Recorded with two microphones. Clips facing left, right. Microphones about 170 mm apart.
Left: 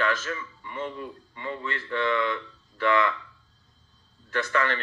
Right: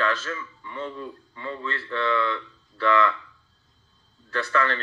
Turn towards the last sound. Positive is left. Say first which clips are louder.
# right 1 dB
turn(degrees=15)  # may be behind; listen again after turning